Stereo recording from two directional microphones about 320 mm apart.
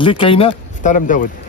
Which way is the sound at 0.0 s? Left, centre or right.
Centre.